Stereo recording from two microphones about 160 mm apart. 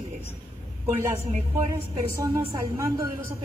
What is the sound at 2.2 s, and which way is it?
Speech, 20° right (ahead or behind).